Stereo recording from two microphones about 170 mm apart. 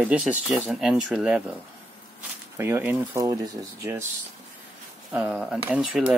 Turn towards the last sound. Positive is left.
turn(degrees=-5)  # may be behind; listen again after turning